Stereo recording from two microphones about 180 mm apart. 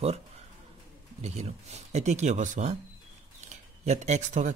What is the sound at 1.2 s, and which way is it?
A man's voice, 40° right (ahead or behind).